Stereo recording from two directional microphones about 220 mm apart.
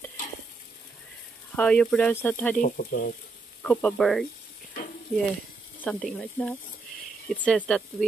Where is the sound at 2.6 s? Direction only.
40° left (ahead or behind).